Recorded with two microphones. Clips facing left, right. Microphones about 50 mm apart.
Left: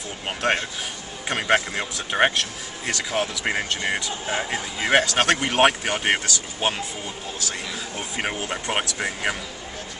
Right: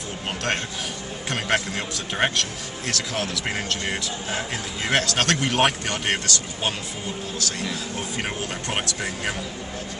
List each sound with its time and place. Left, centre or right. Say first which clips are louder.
0.4 s speech: left 5 dB; centre
8.2 s speech: left 5 dB; centre